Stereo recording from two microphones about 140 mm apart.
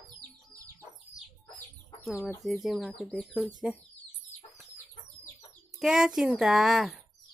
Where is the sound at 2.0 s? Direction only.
5° right (ahead or behind).